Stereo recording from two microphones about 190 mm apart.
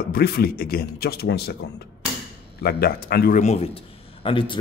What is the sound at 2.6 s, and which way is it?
Speech, 55° left (ahead or behind).